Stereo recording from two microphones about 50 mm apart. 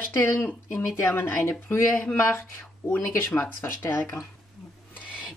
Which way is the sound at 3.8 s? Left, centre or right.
Left.